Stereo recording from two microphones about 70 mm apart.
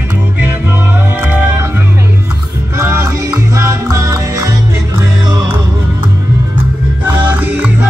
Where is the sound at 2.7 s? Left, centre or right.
Right.